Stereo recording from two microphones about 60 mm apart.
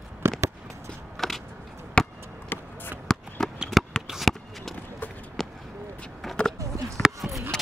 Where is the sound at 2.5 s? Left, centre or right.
Left.